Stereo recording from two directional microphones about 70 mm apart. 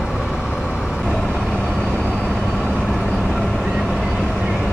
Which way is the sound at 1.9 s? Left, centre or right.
Centre.